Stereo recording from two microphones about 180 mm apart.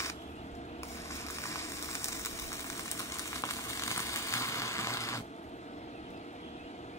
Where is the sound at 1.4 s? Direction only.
15° left (ahead or behind).